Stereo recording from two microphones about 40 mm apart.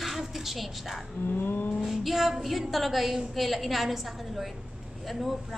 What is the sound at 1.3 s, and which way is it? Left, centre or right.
Vehicle, left.